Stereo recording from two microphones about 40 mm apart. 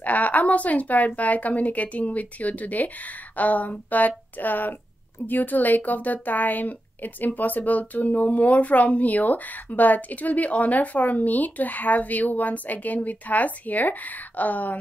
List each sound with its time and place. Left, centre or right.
0.0 s a woman's voice: left